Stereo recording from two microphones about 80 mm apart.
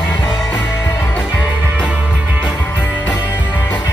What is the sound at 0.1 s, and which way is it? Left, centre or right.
Music, left.